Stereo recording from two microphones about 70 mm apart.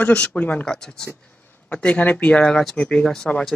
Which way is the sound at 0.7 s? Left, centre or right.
Centre.